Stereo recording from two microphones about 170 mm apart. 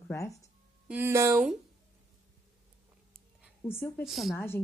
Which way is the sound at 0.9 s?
15° right (ahead or behind).